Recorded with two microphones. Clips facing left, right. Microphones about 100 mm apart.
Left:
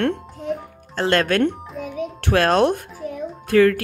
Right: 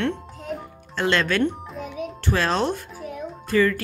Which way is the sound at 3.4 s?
65° left (ahead or behind).